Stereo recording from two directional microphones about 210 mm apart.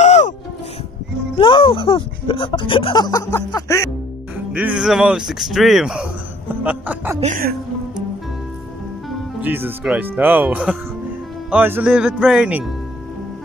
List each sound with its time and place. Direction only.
0.0 s music: 35° left (ahead or behind)
1.4 s speech: 25° left (ahead or behind)
4.5 s speech: 5° right (ahead or behind)
7.2 s speech: 35° right (ahead or behind)
9.4 s speech: 10° right (ahead or behind)